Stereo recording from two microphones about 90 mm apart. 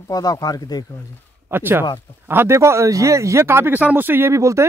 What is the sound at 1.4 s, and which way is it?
Speech, 25° right (ahead or behind).